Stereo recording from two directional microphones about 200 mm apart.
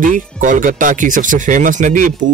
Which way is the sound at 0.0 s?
40° right (ahead or behind).